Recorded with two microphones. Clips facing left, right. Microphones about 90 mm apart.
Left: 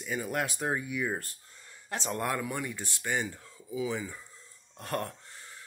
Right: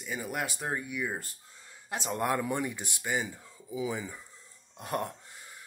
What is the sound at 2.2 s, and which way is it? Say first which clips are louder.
Speech: right 5 dB; 25° right (ahead or behind).